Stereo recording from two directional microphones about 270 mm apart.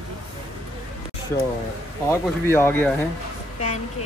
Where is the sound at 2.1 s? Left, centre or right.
Centre.